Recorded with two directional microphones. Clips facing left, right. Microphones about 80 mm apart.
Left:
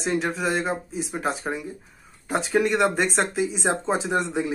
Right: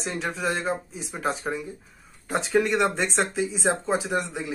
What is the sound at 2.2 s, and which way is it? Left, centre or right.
Speech, centre.